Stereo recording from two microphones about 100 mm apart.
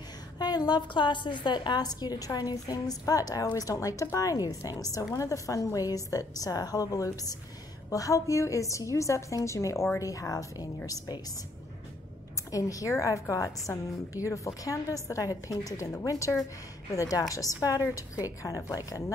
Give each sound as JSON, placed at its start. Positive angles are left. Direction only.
{"t": 0.4, "sound": "a woman's voice", "side_deg": 45}
{"t": 12.4, "sound": "a woman's voice", "side_deg": 35}